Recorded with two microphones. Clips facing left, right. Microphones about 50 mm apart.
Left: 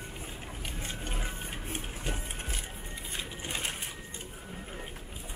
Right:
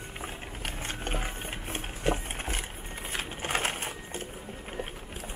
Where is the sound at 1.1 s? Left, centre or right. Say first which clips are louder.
Right 4 dB; right.